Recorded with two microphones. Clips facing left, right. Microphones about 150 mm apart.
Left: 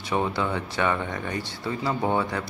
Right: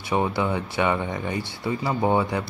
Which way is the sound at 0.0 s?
15° right (ahead or behind).